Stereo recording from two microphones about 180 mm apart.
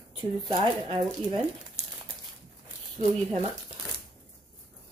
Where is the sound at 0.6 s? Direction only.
25° right (ahead or behind).